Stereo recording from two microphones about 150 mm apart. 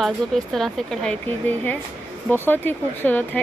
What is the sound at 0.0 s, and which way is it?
Speech, centre (ahead or behind).